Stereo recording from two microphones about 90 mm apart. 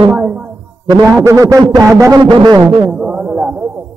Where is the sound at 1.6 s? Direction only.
50° right (ahead or behind).